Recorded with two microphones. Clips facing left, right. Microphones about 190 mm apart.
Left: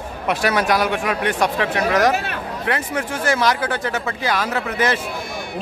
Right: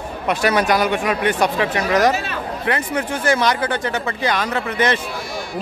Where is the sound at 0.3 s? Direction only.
Centre (ahead or behind).